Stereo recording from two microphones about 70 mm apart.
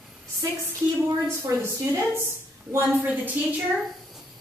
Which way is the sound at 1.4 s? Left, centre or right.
Right.